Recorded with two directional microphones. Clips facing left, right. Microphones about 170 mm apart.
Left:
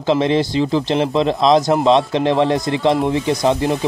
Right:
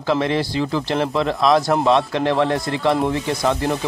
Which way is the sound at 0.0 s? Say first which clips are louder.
Left 4 dB; 20° left (ahead or behind).